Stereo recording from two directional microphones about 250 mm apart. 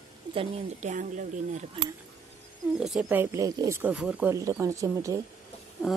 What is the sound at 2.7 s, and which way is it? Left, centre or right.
Speech, centre.